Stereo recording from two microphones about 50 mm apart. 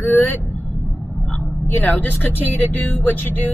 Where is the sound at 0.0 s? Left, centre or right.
Left.